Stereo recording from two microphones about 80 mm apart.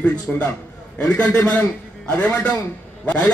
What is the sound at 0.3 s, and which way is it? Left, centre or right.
A man's voice, centre.